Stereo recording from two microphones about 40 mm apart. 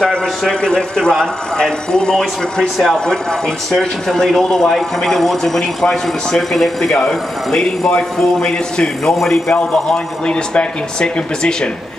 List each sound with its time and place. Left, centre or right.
0.6 s a man's voice: centre
9.1 s a man's voice: centre
9.5 s speech: left